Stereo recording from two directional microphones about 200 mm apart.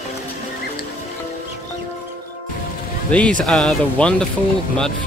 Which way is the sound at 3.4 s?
5° left (ahead or behind).